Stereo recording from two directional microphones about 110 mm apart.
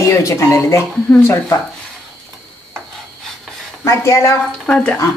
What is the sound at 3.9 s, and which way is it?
Speech, 25° left (ahead or behind).